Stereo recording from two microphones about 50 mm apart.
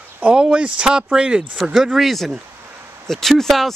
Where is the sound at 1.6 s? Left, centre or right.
Centre.